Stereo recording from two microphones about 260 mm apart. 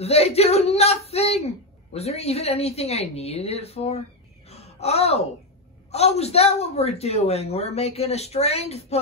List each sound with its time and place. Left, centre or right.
0.0 s speech: left
4.5 s gasp: left
5.9 s speech: left